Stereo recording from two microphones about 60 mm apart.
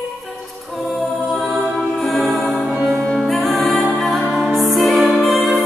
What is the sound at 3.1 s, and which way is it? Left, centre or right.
Music, centre.